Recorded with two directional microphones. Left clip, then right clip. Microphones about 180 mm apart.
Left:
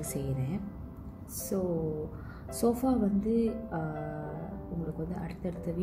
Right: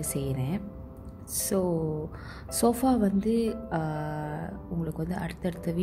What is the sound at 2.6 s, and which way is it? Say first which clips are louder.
Speech: right 4 dB; 55° right (ahead or behind).